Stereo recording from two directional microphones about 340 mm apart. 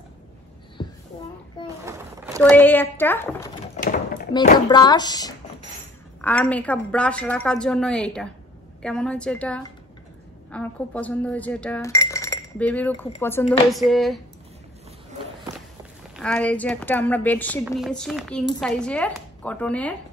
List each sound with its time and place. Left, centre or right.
0.8 s a sound: centre
1.9 s a sound: centre
2.4 s a woman's voice: centre
3.7 s door: left
4.3 s a woman's voice: centre
16.2 s a woman's voice: centre